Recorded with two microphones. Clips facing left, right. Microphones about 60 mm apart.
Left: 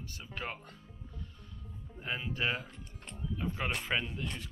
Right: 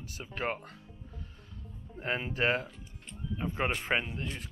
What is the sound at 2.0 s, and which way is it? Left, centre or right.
Speech, right.